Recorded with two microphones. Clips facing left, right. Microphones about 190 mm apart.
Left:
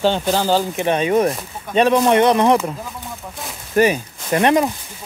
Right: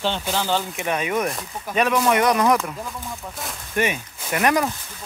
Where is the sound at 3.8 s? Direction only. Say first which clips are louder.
Left 8 dB; 35° left (ahead or behind).